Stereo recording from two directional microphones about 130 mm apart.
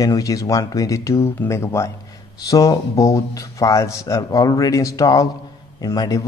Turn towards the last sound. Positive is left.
turn(degrees=30)  # may be behind; listen again after turning